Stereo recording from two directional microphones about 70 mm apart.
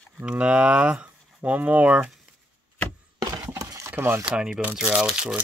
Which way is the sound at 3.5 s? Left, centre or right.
Right.